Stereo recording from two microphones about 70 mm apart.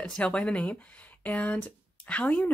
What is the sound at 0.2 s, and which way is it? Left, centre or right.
Speech, centre.